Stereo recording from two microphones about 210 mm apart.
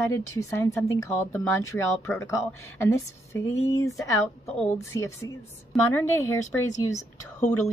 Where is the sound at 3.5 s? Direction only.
80° left.